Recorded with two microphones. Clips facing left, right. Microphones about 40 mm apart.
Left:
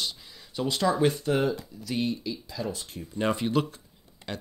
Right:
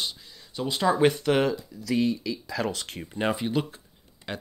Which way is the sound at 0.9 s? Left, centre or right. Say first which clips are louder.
Right 4 dB; right.